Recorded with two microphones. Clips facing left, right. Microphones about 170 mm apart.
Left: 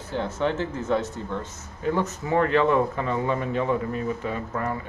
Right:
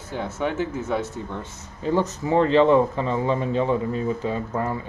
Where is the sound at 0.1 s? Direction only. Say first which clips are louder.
Left 1 dB; 10° right (ahead or behind).